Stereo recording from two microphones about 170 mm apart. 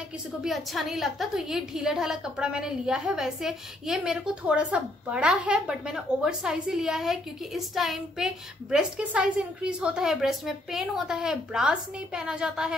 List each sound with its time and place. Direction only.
0.4 s a woman's voice: centre (ahead or behind)